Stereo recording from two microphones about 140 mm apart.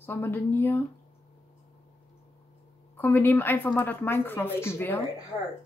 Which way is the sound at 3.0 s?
15° left (ahead or behind).